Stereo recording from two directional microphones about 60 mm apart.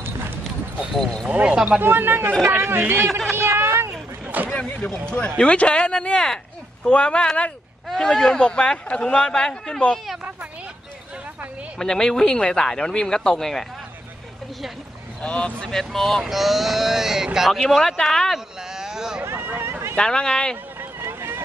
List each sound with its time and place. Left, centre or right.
1.3 s speech: centre
1.8 s speech: right
3.1 s speech: centre
3.3 s a sound: right
4.5 s vehicle: centre
5.4 s speech: centre
11.8 s speech: centre
15.2 s speech: centre
17.5 s speech: centre
18.8 s a sound: centre
19.2 s a sound: right
20.0 s speech: centre
21.0 s vehicle: right